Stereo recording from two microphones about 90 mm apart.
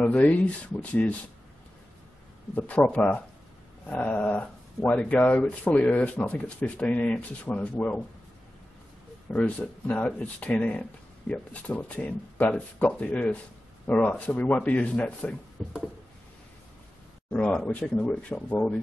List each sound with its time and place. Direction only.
0.0 s speech: 15° left (ahead or behind)
2.5 s speech: 15° left (ahead or behind)
9.3 s speech: 15° left (ahead or behind)
15.6 s a sound: centre (ahead or behind)
17.3 s speech: 10° left (ahead or behind)